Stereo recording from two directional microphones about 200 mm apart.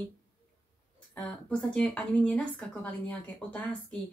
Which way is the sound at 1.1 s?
5° left (ahead or behind).